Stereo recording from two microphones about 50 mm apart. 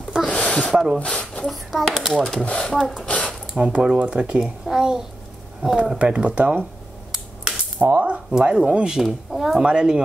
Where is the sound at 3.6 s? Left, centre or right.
Right.